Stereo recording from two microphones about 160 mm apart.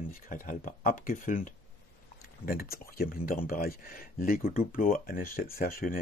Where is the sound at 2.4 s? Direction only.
70° left (ahead or behind).